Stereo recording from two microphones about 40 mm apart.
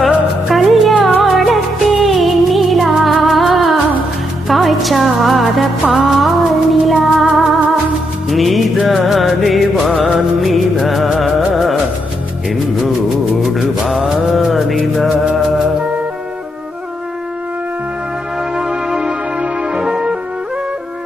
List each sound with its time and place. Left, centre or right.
0.5 s music: centre
9.9 s music: right
10.4 s music: centre
13.4 s music: centre
18.6 s music: right